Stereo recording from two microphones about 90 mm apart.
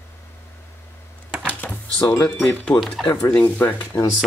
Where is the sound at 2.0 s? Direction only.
15° left (ahead or behind).